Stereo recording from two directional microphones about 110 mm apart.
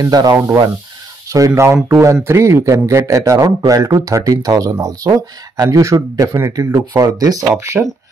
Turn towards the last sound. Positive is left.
turn(degrees=-10)  # may be behind; listen again after turning